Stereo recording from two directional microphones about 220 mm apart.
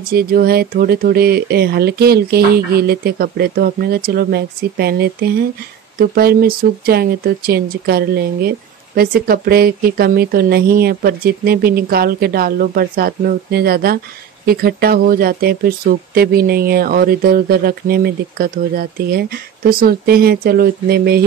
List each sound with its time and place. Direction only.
0.1 s speech: 40° right (ahead or behind)